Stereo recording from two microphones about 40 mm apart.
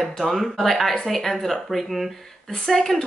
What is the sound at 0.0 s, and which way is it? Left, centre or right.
Speech, centre.